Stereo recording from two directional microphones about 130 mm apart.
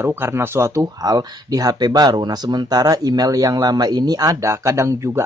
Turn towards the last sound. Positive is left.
turn(degrees=-20)  # may be behind; listen again after turning